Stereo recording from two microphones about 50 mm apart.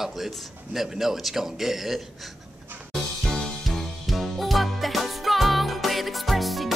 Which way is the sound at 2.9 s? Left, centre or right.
Centre.